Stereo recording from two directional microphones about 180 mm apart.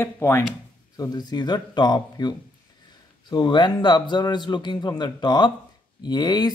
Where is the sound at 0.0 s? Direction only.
15° left (ahead or behind).